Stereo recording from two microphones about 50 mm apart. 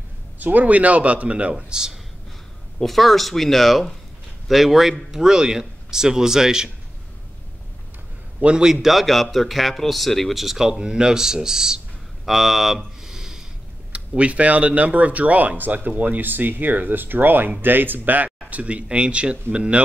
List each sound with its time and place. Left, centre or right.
0.4 s speech: right; by 2.0 s centre
2.8 s speech: centre
8.4 s a man's voice: right
8.6 s speech: centre
12.3 s a sound: centre
13.9 s speech: right